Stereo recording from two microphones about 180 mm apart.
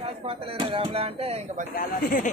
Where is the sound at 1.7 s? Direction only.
55° left (ahead or behind).